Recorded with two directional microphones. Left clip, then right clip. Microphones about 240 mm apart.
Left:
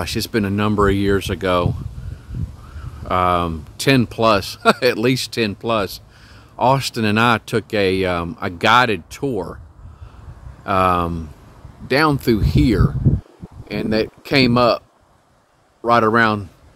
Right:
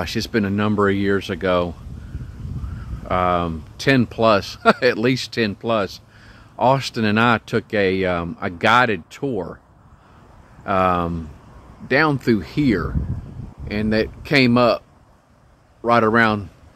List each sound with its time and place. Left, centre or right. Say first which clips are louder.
0.0 s speech: left 1 dB; centre
3.1 s speech: left 2 dB; centre
10.6 s speech: left 2 dB; centre
15.8 s speech: left 1 dB; centre